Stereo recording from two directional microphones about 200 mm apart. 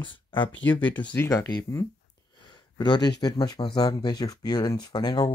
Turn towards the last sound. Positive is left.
turn(degrees=20)  # may be behind; listen again after turning